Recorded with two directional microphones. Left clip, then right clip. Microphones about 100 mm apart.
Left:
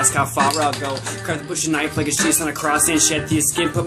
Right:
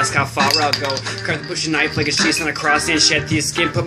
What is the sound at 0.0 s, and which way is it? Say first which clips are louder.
Speech: right 1 dB; 20° left (ahead or behind).